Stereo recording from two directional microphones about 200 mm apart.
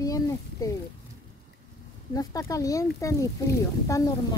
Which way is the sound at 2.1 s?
15° left (ahead or behind).